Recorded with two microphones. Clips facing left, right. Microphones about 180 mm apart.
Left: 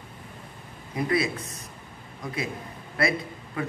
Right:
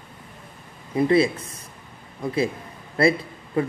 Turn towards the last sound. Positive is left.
turn(degrees=-30)  # may be behind; listen again after turning